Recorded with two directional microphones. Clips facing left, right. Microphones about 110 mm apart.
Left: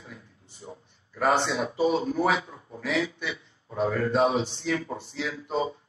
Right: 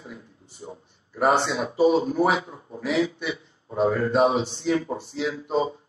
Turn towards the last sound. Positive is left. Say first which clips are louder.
# right 4 dB
turn(degrees=-25)  # may be behind; listen again after turning